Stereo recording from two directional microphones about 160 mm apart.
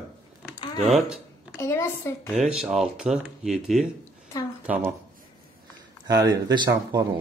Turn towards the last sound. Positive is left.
turn(degrees=-25)  # may be behind; listen again after turning